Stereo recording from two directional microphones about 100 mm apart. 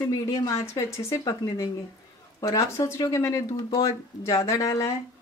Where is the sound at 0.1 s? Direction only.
35° left (ahead or behind).